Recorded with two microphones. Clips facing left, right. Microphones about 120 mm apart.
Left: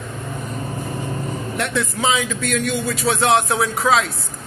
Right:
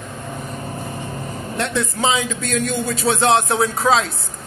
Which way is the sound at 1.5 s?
25° right (ahead or behind).